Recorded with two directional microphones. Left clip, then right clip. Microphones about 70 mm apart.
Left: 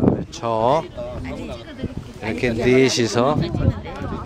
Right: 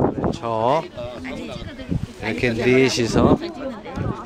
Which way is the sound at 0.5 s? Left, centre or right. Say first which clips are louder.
Left 2 dB; left.